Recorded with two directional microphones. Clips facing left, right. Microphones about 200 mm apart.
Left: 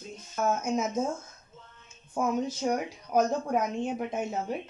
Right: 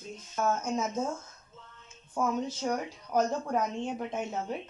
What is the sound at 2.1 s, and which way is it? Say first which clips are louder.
Speech: left 2 dB; 10° left (ahead or behind).